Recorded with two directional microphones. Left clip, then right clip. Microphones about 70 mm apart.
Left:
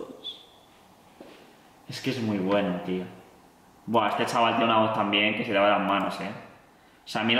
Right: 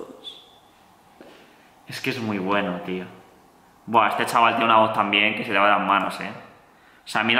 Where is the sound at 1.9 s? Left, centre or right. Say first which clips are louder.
Right 4 dB; centre.